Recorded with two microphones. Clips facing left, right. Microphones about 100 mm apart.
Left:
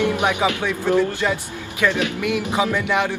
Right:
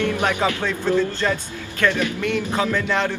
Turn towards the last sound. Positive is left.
turn(degrees=15)  # may be behind; listen again after turning